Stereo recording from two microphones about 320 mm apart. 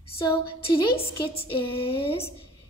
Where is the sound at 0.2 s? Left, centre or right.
Centre.